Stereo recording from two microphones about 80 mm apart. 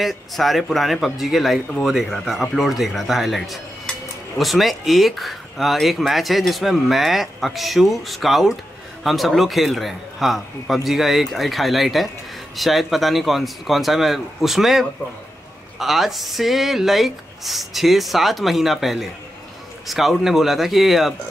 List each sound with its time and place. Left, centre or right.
0.0 s speech: centre